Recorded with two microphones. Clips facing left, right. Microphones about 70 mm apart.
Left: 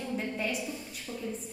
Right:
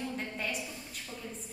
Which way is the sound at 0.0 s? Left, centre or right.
Centre.